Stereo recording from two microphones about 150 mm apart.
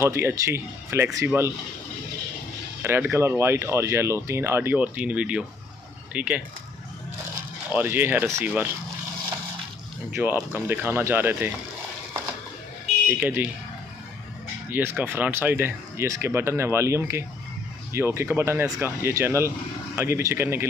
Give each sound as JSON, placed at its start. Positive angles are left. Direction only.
{"t": 0.0, "sound": "speech", "side_deg": -15}
{"t": 2.8, "sound": "speech", "side_deg": -15}
{"t": 7.7, "sound": "speech", "side_deg": -15}
{"t": 10.2, "sound": "speech", "side_deg": -10}
{"t": 13.1, "sound": "speech", "side_deg": -10}
{"t": 14.7, "sound": "speech", "side_deg": -15}